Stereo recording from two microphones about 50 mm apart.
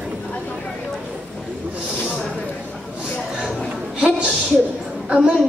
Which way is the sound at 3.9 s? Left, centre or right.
Right.